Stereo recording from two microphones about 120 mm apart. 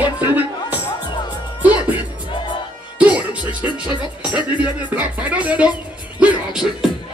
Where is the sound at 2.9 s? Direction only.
10° right (ahead or behind).